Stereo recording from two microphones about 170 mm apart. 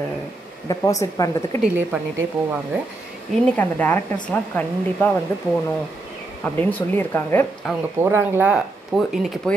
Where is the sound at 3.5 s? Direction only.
10° left (ahead or behind).